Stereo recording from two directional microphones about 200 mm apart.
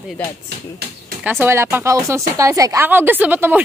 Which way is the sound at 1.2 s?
10° right (ahead or behind).